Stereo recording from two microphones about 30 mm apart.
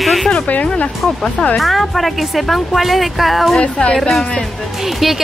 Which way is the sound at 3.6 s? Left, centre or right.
Left.